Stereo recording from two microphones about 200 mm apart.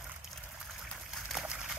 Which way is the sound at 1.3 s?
5° right (ahead or behind).